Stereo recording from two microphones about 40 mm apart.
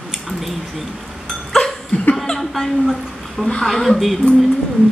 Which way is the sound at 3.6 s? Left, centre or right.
Centre.